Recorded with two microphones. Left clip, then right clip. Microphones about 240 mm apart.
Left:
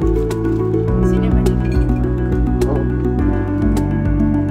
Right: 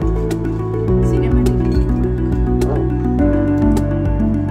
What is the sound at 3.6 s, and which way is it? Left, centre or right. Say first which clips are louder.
Music: right 2 dB; centre.